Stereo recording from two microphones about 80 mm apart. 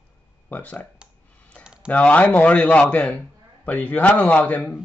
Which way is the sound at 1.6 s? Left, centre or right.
Centre.